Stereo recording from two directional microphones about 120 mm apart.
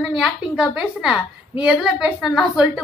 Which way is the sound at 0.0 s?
Centre (ahead or behind).